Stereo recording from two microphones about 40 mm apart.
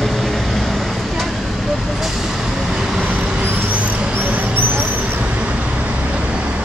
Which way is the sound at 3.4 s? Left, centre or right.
Right.